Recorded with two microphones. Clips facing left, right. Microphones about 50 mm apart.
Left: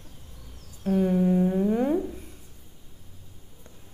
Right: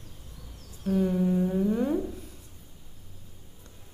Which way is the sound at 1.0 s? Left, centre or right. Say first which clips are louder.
Left 3 dB; left.